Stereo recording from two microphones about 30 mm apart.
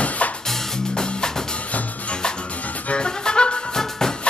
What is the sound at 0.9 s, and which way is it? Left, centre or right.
Music, left.